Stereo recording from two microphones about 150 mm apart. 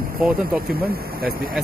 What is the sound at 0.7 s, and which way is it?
Speech, 85° right.